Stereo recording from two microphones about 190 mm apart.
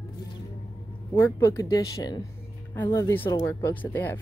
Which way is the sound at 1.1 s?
15° left (ahead or behind).